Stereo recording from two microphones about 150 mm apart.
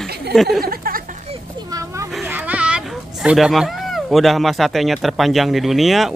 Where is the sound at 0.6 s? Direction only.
75° right (ahead or behind).